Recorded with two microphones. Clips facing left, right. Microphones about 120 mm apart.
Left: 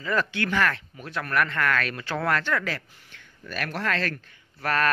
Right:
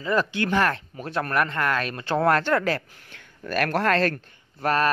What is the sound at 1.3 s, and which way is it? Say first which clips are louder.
Speech: even; 25° right (ahead or behind).